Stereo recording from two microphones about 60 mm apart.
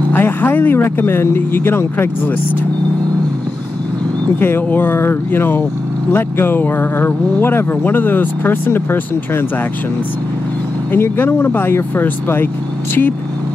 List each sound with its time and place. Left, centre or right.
0.1 s speech: left
4.4 s speech: left
10.9 s speech: left